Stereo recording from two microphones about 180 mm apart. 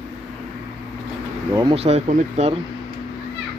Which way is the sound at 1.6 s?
30° right (ahead or behind).